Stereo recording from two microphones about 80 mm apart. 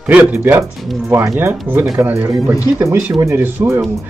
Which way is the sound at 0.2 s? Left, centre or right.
Right.